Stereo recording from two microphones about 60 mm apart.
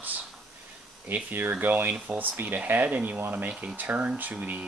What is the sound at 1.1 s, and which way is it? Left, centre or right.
Speech, right.